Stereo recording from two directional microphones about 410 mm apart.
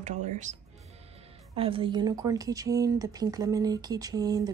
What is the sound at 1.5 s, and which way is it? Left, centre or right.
Speech, centre.